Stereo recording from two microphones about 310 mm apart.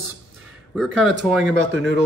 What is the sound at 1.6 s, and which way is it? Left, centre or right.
Speech, right.